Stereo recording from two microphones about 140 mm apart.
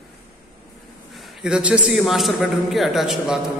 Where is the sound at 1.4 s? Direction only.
5° right (ahead or behind).